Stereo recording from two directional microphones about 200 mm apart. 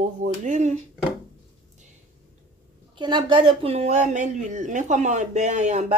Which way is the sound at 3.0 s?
25° right (ahead or behind).